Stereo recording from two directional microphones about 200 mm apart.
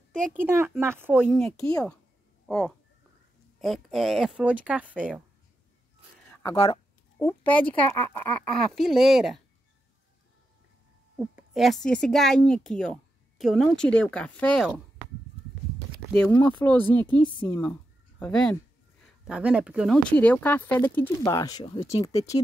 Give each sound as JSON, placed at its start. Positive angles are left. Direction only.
{"t": 0.4, "sound": "speech", "side_deg": -10}
{"t": 1.2, "sound": "a woman's voice", "side_deg": 5}
{"t": 6.4, "sound": "speech", "side_deg": 25}
{"t": 7.2, "sound": "speech", "side_deg": 10}
{"t": 11.1, "sound": "a woman's voice", "side_deg": -5}
{"t": 16.1, "sound": "a woman's voice", "side_deg": 10}